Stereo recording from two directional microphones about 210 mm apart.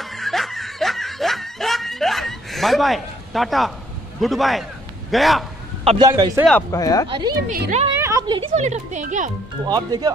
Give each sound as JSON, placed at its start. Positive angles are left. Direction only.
{"t": 0.0, "sound": "snicker", "side_deg": 0}
{"t": 4.2, "sound": "a man's voice", "side_deg": 0}
{"t": 6.0, "sound": "a man's voice", "side_deg": -15}
{"t": 6.7, "sound": "speech", "side_deg": 15}
{"t": 7.1, "sound": "speech", "side_deg": -20}
{"t": 7.4, "sound": "speech", "side_deg": -45}
{"t": 8.0, "sound": "a sound", "side_deg": -15}
{"t": 8.5, "sound": "speech", "side_deg": -35}
{"t": 9.7, "sound": "speech", "side_deg": -20}